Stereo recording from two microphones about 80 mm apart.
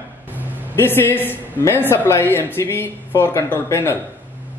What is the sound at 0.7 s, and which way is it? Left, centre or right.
A man's voice, left.